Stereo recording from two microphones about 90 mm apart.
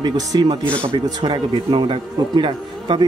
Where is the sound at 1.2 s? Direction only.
70° right (ahead or behind).